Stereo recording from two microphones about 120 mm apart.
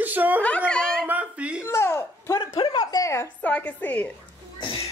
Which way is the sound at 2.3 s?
35° left (ahead or behind).